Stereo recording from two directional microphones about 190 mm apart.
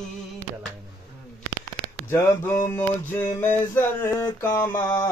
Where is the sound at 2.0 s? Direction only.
10° left (ahead or behind).